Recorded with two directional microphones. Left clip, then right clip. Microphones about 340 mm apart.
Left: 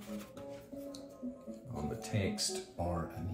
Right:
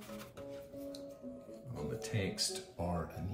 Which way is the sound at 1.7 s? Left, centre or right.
Centre.